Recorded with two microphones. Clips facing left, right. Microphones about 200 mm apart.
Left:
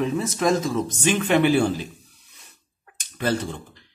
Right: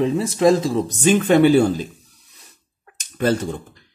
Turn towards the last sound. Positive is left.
turn(degrees=-45)  # may be behind; listen again after turning